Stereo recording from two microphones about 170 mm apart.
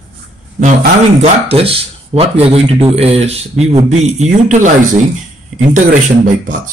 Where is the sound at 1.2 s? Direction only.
35° right (ahead or behind); by 6.7 s 50° right (ahead or behind).